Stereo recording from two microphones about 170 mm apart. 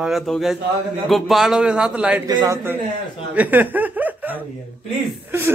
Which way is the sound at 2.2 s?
20° right (ahead or behind).